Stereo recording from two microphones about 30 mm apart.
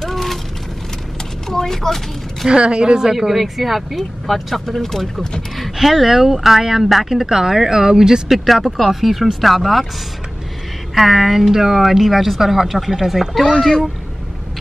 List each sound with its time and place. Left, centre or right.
0.0 s vehicle: centre
1.5 s a sound: centre
2.5 s speech: right
3.0 s speech: centre
4.6 s speech: centre
5.8 s a woman's voice: centre
8.3 s a woman's voice: centre
11.0 s a woman's voice: centre
13.6 s speech: centre